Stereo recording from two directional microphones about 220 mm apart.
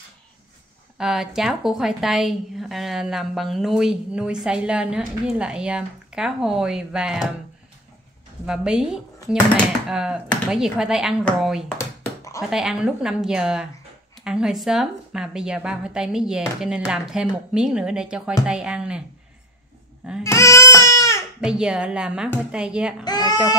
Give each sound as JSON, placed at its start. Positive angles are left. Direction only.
{"t": 0.9, "sound": "a woman's voice", "side_deg": 0}
{"t": 8.5, "sound": "a woman's voice", "side_deg": -5}
{"t": 11.8, "sound": "a sound", "side_deg": 15}
{"t": 12.4, "sound": "a woman's voice", "side_deg": 0}
{"t": 20.2, "sound": "crying", "side_deg": 15}
{"t": 21.4, "sound": "a woman's voice", "side_deg": -5}
{"t": 23.0, "sound": "speech", "side_deg": 20}